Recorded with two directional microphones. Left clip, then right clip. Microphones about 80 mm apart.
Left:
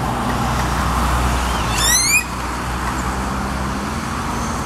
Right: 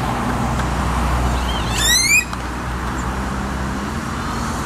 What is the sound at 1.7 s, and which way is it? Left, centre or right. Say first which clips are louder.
Vehicle: right 2 dB; centre.